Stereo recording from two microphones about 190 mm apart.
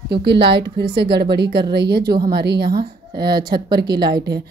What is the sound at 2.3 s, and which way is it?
A woman's voice, 60° right (ahead or behind).